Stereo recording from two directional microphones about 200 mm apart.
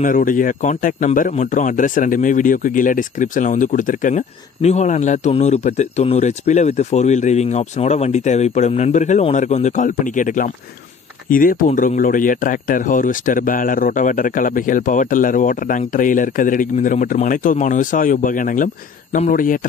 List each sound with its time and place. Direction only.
0.0 s speech: 40° left (ahead or behind)